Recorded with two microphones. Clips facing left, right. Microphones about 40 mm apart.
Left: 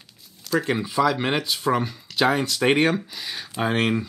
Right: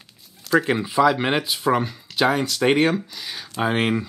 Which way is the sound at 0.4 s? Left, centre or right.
Centre.